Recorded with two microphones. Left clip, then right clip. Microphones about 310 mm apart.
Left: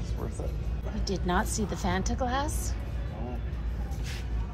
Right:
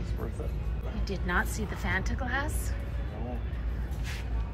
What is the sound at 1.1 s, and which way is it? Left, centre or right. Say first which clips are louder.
A woman's voice: left 1 dB; centre.